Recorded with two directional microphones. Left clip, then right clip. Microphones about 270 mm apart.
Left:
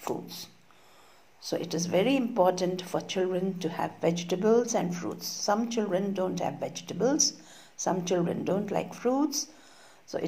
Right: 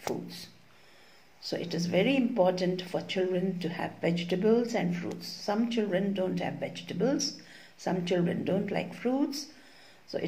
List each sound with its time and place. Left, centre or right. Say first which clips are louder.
0.1 s a woman's voice: left 2 dB; left
1.6 s a woman's voice: left 1 dB; left